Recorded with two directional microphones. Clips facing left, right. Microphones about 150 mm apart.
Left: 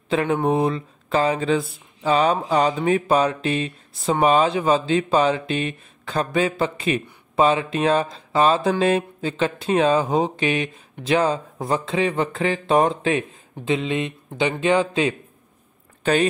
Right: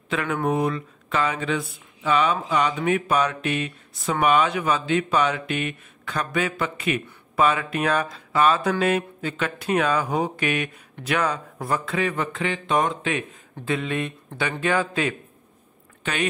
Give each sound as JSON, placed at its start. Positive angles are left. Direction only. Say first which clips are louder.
{"t": 0.1, "sound": "speech", "louder": "left 4 dB", "side_deg": 30}
{"t": 13.7, "sound": "speech", "louder": "left 3 dB", "side_deg": 20}
{"t": 16.0, "sound": "speech", "louder": "left 8 dB", "side_deg": 35}